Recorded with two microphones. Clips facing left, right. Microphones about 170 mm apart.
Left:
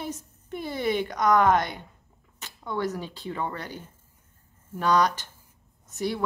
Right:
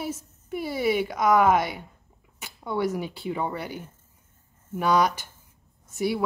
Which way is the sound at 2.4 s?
10° right (ahead or behind).